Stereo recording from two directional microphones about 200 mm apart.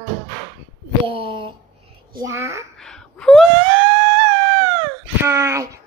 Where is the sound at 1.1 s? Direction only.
25° right (ahead or behind).